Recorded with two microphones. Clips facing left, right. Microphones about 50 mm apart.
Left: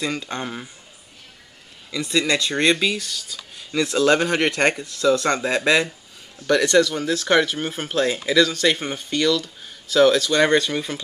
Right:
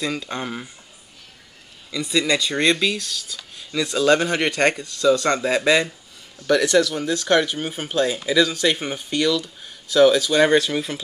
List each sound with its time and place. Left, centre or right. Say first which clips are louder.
0.0 s speech: even; centre
2.0 s speech: even; centre